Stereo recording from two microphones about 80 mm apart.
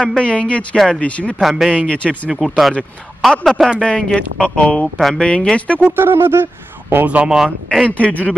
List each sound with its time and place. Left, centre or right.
0.0 s speech: centre
1.4 s a man's voice: centre
1.7 s speech: centre
2.3 s a man's voice: centre
5.3 s speech: centre
5.8 s speech: right
7.1 s speech: centre
7.3 s a man's voice: centre
8.0 s speech: centre